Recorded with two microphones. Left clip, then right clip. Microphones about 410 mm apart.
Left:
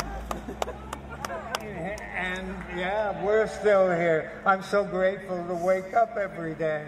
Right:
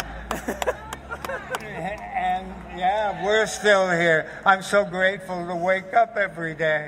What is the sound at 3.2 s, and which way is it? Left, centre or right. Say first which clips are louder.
A man's voice: right 3 dB; right.